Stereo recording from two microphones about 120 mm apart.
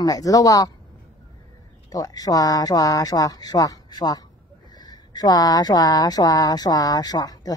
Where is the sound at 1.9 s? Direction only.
30° left (ahead or behind).